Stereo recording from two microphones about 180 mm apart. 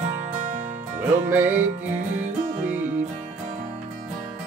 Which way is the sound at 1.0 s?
10° right (ahead or behind).